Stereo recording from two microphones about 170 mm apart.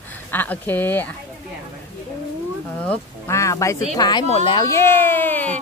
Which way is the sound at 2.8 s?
15° left (ahead or behind).